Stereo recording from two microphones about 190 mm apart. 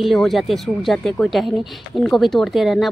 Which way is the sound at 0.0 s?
Centre (ahead or behind).